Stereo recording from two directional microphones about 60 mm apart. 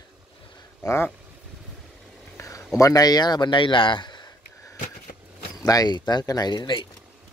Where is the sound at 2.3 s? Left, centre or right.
Left.